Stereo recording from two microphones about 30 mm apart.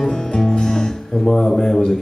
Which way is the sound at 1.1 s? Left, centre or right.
Centre.